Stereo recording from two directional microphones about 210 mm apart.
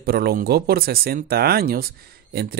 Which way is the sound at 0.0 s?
45° right (ahead or behind).